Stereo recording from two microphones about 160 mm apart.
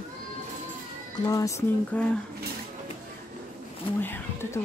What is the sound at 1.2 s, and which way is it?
Speech, 20° left (ahead or behind).